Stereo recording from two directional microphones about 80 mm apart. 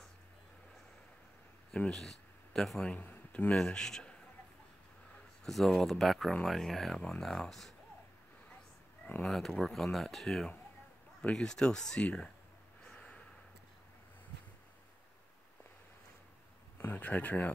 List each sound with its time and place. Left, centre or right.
1.7 s speech: centre
2.9 s speech: centre
3.5 s speech: centre
5.4 s speech: centre
9.2 s speech: centre
12.8 s snort: centre
16.7 s speech: left